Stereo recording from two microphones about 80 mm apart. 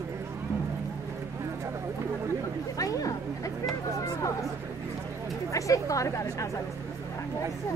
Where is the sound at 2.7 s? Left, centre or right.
Left.